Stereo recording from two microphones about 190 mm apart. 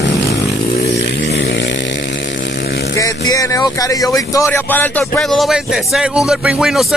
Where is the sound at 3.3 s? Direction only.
20° left (ahead or behind).